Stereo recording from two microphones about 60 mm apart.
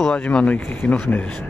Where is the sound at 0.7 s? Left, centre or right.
Left.